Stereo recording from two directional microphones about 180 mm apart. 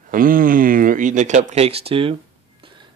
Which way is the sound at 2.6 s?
25° right (ahead or behind).